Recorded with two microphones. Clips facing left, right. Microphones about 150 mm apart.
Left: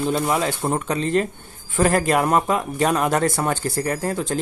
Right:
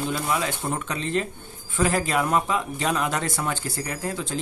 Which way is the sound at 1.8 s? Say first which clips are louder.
Left 5 dB; 50° left (ahead or behind).